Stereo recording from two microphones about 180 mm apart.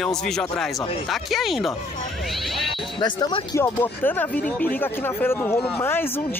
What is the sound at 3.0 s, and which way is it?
Speech, 25° left (ahead or behind).